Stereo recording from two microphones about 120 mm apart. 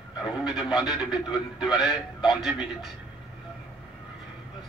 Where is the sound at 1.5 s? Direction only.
5° right (ahead or behind).